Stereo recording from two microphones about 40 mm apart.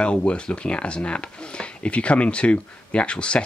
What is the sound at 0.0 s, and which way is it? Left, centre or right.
Speech, left.